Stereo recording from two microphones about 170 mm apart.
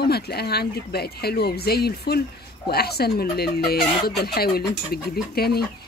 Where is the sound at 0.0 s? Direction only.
70° left (ahead or behind).